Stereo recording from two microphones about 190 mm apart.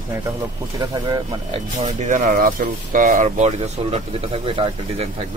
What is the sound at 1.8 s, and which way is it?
Speech, 40° right (ahead or behind).